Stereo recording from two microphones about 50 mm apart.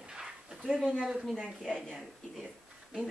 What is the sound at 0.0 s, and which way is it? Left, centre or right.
Dog, centre.